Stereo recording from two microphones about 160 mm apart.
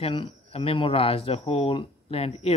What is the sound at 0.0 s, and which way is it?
Speech, 35° left (ahead or behind).